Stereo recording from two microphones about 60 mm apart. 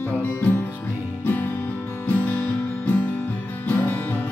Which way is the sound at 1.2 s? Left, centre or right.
Left.